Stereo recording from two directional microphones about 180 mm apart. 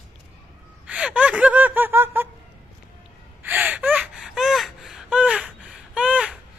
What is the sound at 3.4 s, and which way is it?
Gasp, 10° right (ahead or behind).